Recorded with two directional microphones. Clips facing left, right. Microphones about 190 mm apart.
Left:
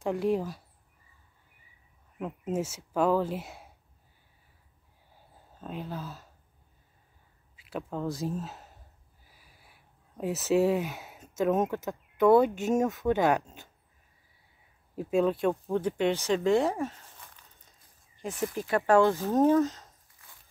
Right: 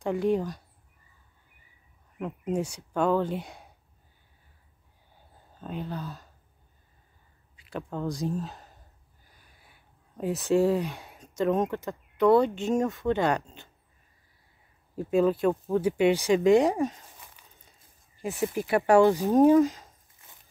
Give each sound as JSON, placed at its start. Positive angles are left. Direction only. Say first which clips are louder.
{"t": 0.0, "sound": "speech", "louder": "right 2 dB", "side_deg": 0}
{"t": 2.1, "sound": "speech", "louder": "right 2 dB", "side_deg": 0}
{"t": 5.1, "sound": "a sound", "louder": "even", "side_deg": 0}
{"t": 7.5, "sound": "speech", "louder": "even", "side_deg": 0}
{"t": 15.0, "sound": "speech", "louder": "right 2 dB", "side_deg": 0}
{"t": 20.2, "sound": "walk", "louder": "right 1 dB", "side_deg": -20}